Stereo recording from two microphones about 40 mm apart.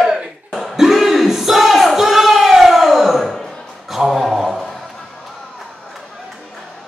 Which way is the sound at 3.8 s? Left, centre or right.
Centre.